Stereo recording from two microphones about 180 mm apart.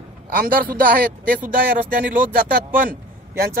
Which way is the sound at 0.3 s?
50° right (ahead or behind).